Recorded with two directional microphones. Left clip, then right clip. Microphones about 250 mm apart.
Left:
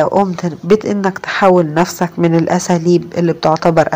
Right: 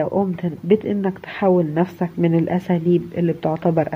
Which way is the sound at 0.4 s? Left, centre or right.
Centre.